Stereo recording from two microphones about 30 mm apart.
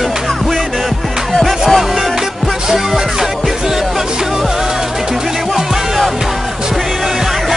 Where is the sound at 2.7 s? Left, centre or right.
Centre.